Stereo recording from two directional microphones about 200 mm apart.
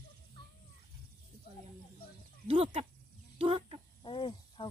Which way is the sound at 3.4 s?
30° right (ahead or behind).